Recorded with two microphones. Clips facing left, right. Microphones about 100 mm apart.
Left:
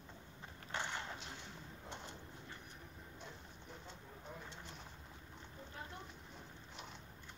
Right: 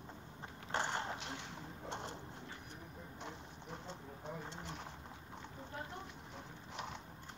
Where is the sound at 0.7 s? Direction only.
35° right (ahead or behind).